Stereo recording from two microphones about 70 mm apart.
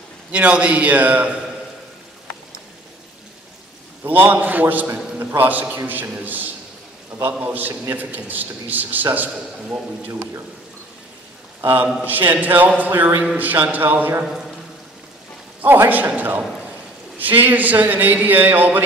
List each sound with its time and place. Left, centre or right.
0.3 s a man's voice: centre
4.0 s a man's voice: right
11.6 s a man's voice: right
15.6 s a man's voice: right